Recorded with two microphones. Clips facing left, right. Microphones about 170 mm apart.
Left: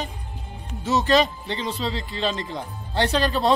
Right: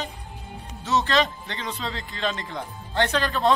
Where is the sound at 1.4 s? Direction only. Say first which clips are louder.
Left 5 dB; 25° left (ahead or behind).